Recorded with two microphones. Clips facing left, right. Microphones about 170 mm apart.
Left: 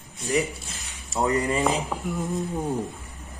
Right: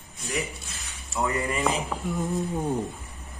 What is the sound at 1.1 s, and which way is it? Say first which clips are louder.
Speech: left 4 dB; 35° left (ahead or behind).